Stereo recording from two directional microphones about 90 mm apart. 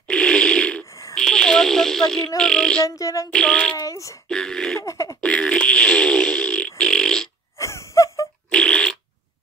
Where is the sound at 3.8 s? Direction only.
40° left (ahead or behind).